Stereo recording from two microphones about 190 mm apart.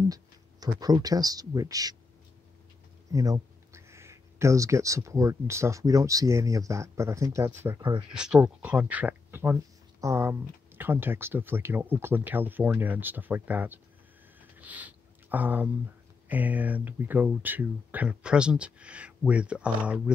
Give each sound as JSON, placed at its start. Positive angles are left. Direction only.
{"t": 0.1, "sound": "speech", "side_deg": -20}
{"t": 3.1, "sound": "speech", "side_deg": -20}
{"t": 8.1, "sound": "speech", "side_deg": -5}
{"t": 14.4, "sound": "a sound", "side_deg": -10}
{"t": 16.3, "sound": "speech", "side_deg": -10}